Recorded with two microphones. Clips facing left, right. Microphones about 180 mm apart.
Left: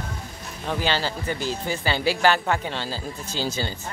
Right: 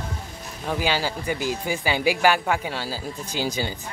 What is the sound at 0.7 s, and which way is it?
Speech, 10° right (ahead or behind).